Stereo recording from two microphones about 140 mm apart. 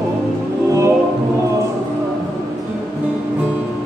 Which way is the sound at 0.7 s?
20° right (ahead or behind).